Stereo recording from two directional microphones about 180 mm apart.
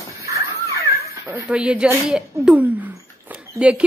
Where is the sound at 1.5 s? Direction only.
5° right (ahead or behind).